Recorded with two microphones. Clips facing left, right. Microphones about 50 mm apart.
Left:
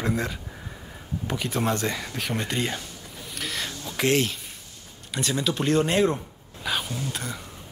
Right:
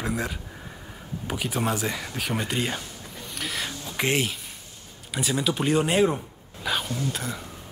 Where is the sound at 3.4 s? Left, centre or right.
Centre.